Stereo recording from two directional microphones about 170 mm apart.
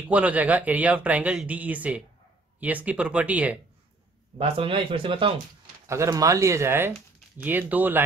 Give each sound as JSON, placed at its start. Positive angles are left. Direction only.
{"t": 0.1, "sound": "a man's voice", "side_deg": -10}
{"t": 4.4, "sound": "speech", "side_deg": -30}
{"t": 5.9, "sound": "a man's voice", "side_deg": -15}